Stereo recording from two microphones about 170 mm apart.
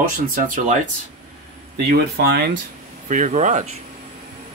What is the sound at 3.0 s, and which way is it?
Speech, 45° right (ahead or behind).